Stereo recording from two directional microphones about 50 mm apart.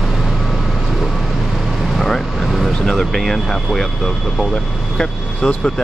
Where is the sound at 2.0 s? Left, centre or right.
Centre.